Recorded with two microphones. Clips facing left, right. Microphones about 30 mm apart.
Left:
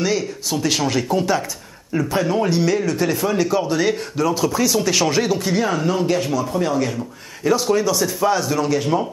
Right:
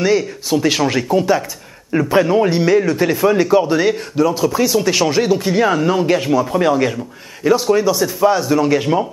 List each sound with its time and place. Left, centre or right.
0.0 s speech: centre
1.9 s speech: right
7.4 s speech: centre